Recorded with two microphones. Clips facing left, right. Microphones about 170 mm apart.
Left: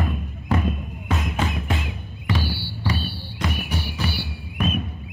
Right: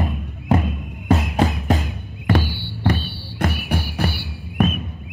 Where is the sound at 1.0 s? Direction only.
35° right (ahead or behind).